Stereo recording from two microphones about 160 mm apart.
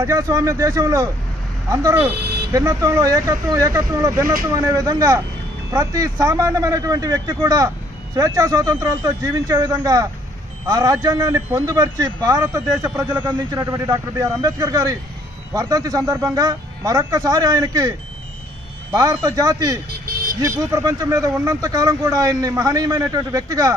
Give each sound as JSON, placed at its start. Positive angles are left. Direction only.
{"t": 0.0, "sound": "speech", "side_deg": -20}
{"t": 18.9, "sound": "speech", "side_deg": -20}